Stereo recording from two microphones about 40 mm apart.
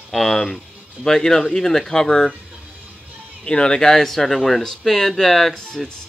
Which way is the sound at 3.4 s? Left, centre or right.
Left.